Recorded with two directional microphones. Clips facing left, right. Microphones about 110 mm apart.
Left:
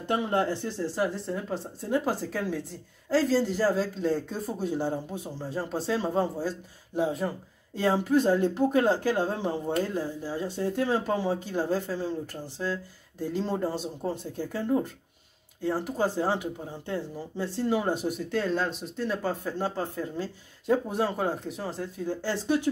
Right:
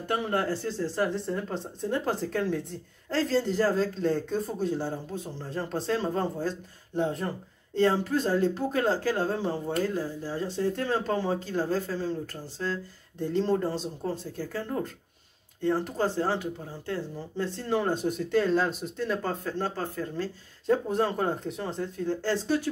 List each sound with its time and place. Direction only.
0.0 s speech: 20° left (ahead or behind)
1.1 s speech: 5° left (ahead or behind)
19.4 s speech: 15° left (ahead or behind)